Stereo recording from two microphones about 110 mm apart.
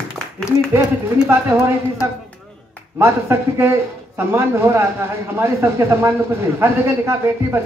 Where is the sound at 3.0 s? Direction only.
25° right (ahead or behind).